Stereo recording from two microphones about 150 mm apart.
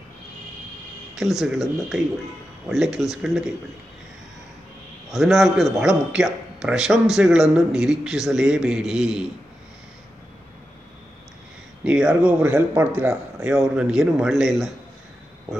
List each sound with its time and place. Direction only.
1.1 s a man's voice: centre (ahead or behind)
5.1 s a man's voice: centre (ahead or behind)
11.8 s a man's voice: 5° right (ahead or behind)